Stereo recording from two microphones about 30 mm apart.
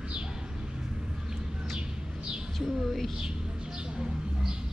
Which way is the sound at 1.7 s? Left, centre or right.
Right.